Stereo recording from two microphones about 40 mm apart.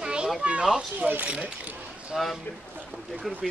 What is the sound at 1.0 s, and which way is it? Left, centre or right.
Speech, right.